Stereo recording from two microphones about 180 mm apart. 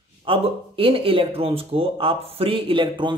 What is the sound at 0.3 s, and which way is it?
A man's voice, 30° right (ahead or behind).